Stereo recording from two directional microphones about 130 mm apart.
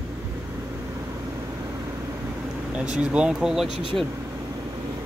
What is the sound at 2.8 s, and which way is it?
Speech, 10° right (ahead or behind).